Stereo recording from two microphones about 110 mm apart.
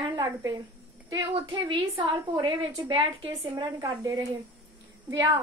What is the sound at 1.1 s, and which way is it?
A woman's voice, 50° right (ahead or behind).